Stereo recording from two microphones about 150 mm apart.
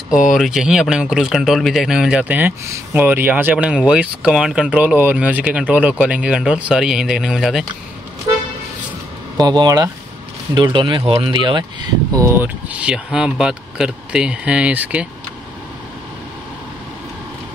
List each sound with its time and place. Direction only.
0.3 s speech: centre (ahead or behind)
9.4 s speech: 30° right (ahead or behind)
12.1 s speech: 20° right (ahead or behind)